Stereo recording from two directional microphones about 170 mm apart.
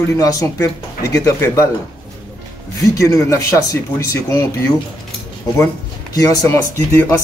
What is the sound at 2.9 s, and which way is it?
Speech, 20° left (ahead or behind).